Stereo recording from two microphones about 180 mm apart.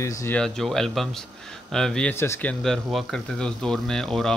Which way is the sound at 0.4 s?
Centre (ahead or behind).